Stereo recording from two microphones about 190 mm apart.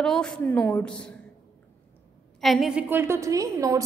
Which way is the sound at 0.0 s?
5° left (ahead or behind).